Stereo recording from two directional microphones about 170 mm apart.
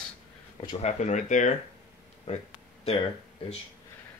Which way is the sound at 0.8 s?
45° left (ahead or behind).